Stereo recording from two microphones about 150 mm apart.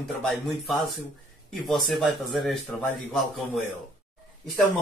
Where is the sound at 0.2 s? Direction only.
Centre (ahead or behind).